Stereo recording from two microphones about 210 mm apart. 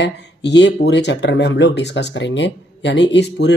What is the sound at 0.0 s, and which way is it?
Speech, 55° left (ahead or behind).